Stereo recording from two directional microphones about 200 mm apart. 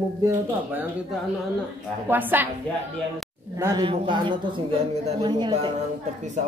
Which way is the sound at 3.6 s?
20° right (ahead or behind).